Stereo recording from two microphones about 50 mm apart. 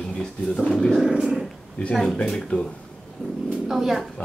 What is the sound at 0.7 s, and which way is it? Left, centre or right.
Speech, centre.